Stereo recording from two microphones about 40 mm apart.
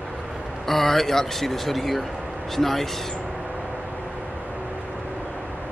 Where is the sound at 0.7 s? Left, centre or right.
Centre.